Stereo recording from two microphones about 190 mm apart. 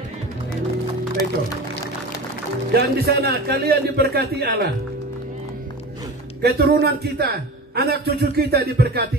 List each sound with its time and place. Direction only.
2.7 s a man's voice: 55° right (ahead or behind)
6.4 s a man's voice: 55° right (ahead or behind)